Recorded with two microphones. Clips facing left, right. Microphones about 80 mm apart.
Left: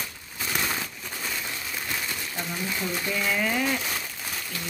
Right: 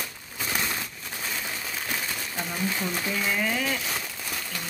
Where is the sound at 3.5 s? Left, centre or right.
Centre.